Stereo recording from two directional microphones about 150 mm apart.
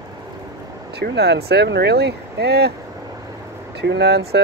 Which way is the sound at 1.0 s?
90° right.